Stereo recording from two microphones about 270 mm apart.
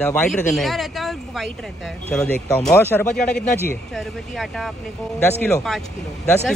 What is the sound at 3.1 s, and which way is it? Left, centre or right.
Speech, left.